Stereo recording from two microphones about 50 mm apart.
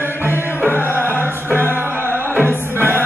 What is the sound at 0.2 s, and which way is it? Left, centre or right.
Music, right.